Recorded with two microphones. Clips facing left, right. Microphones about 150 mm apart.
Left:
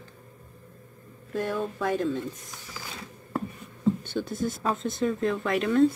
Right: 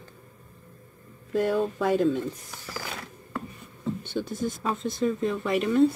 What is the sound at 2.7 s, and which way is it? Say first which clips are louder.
Mechanisms: right 6 dB; 70° right (ahead or behind).